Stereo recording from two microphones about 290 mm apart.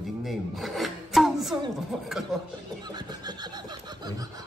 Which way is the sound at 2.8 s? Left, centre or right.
Centre.